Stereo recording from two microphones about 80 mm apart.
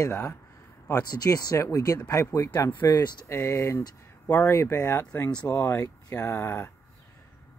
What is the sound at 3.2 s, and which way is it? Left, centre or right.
Speech, left.